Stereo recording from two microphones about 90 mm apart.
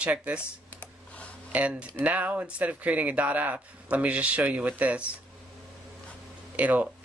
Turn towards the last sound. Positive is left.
turn(degrees=-15)  # may be behind; listen again after turning